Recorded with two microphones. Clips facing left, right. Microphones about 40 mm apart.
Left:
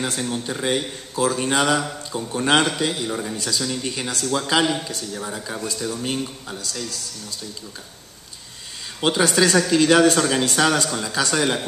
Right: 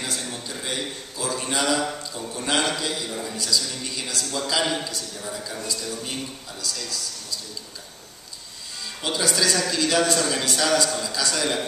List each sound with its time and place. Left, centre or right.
0.0 s speech: left
9.0 s speech: left